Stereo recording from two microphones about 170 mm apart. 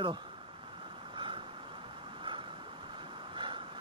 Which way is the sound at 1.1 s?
30° right (ahead or behind).